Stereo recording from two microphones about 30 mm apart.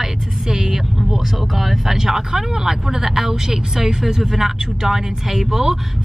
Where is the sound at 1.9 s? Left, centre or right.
Centre.